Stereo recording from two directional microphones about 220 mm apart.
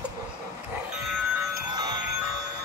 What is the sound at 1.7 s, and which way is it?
Music, 20° right (ahead or behind).